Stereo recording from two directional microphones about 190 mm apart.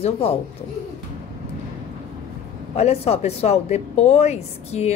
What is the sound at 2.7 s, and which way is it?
Speech, 35° left (ahead or behind).